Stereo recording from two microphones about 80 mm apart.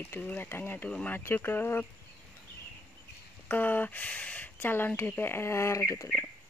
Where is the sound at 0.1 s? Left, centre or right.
Left.